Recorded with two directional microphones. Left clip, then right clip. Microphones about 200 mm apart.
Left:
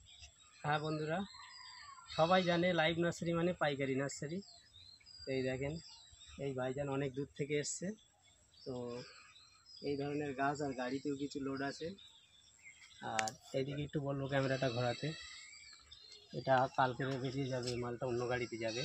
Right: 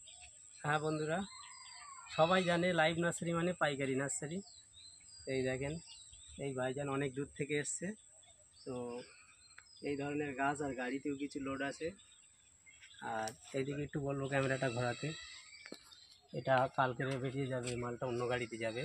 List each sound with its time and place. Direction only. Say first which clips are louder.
0.6 s speech: right 2 dB; 5° left (ahead or behind); by 7.9 s 25° left (ahead or behind)
9.8 s speech: even; 40° left (ahead or behind)
13.6 s speech: right 1 dB; 35° left (ahead or behind)
14.3 s speech: even; 20° left (ahead or behind)
16.4 s speech: even; 20° right (ahead or behind)